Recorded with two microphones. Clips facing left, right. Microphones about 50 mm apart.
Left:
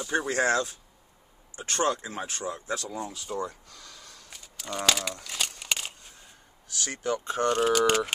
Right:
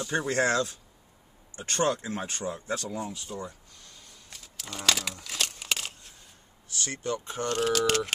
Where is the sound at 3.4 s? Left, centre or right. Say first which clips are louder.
Left 5 dB; left.